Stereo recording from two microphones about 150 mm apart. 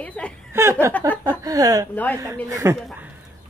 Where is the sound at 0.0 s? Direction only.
10° left (ahead or behind).